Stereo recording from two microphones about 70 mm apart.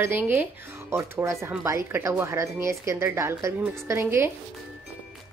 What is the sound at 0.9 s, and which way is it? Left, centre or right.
Speech, right.